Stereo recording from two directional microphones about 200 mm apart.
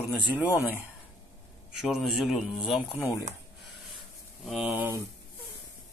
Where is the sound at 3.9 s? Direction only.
Centre (ahead or behind).